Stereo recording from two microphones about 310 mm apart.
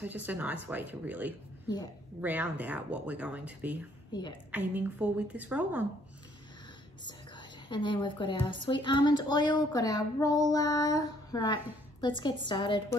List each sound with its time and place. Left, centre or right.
0.0 s speech: centre
7.1 s a woman's voice: centre